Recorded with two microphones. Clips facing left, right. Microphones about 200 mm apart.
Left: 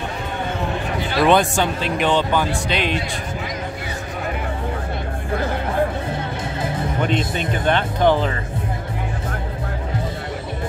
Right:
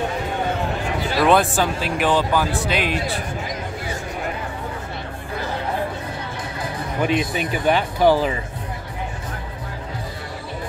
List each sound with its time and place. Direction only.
1.1 s a man's voice: centre (ahead or behind)
7.0 s speech: 5° right (ahead or behind)